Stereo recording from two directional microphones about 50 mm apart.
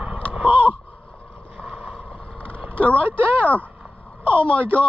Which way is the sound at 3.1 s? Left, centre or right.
Right.